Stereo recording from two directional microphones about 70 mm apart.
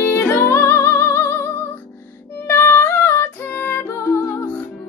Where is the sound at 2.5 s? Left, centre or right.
Left.